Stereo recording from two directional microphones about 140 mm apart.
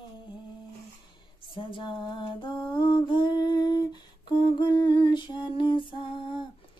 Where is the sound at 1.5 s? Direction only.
35° left (ahead or behind).